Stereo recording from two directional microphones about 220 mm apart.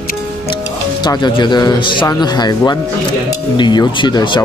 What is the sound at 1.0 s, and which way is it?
Speech, 20° left (ahead or behind).